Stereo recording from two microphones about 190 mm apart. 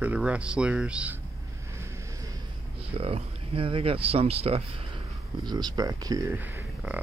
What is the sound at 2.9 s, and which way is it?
Speech, 30° right (ahead or behind).